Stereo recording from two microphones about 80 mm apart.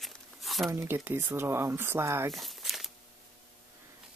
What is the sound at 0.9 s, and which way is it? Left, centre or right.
Speech, right.